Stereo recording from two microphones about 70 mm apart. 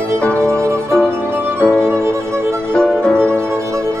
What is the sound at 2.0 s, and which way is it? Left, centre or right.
Music, right.